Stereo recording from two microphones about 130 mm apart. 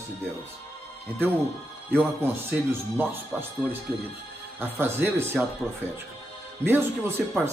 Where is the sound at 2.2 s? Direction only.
15° right (ahead or behind).